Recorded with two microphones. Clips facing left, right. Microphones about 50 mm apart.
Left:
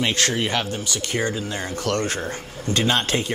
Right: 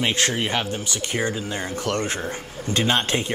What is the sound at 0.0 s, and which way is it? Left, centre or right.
Speech, right.